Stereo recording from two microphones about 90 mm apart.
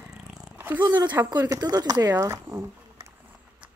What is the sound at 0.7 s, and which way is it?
Speech, 55° right (ahead or behind).